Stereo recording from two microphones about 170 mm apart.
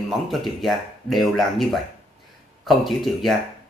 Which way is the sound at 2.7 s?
Centre (ahead or behind).